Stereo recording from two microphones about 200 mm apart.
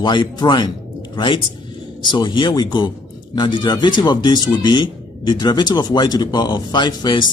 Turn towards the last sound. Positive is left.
turn(degrees=20)  # may be behind; listen again after turning